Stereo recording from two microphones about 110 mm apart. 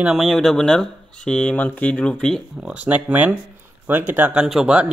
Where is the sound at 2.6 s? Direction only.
10° right (ahead or behind).